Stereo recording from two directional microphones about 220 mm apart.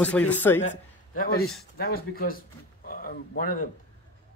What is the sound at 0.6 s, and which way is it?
A woman's voice, 35° left (ahead or behind).